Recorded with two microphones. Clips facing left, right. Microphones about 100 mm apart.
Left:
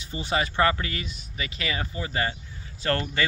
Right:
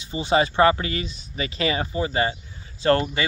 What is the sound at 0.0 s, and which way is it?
Speech, 20° right (ahead or behind).